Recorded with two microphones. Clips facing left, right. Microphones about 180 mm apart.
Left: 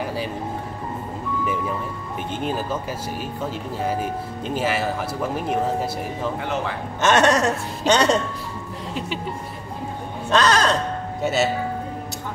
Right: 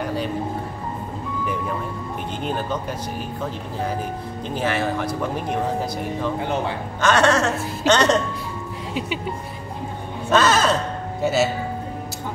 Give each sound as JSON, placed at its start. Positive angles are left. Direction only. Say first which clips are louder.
{"t": 0.0, "sound": "music", "louder": "right 2 dB", "side_deg": 5}
{"t": 2.4, "sound": "speech", "louder": "even", "side_deg": 5}
{"t": 4.6, "sound": "speech", "louder": "right 1 dB", "side_deg": 5}
{"t": 7.0, "sound": "speech", "louder": "left 1 dB", "side_deg": 20}
{"t": 10.3, "sound": "speech", "louder": "right 1 dB", "side_deg": -5}